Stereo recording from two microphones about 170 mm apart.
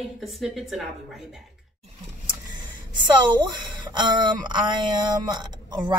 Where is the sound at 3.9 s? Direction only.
25° right (ahead or behind).